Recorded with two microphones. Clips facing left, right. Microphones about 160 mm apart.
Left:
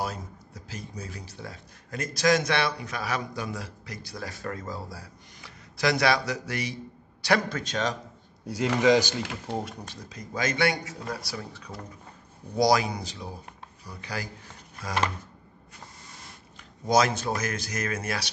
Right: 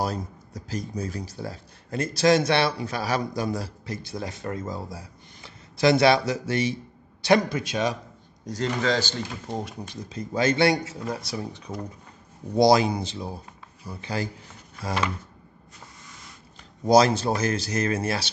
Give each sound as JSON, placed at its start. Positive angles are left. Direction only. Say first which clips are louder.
{"t": 0.0, "sound": "speech", "louder": "right 5 dB", "side_deg": -40}
{"t": 7.4, "sound": "a man's voice", "louder": "right 3 dB", "side_deg": -10}
{"t": 8.8, "sound": "speech", "louder": "left 7 dB", "side_deg": 10}
{"t": 9.5, "sound": "speech", "louder": "even", "side_deg": 0}
{"t": 10.0, "sound": "speech", "louder": "right 7 dB", "side_deg": -30}
{"t": 16.8, "sound": "speech", "louder": "right 5 dB", "side_deg": -35}